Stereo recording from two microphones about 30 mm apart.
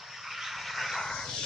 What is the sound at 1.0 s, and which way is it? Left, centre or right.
Vehicle, centre.